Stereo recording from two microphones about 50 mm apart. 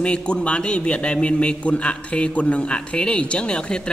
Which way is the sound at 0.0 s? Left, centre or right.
Left.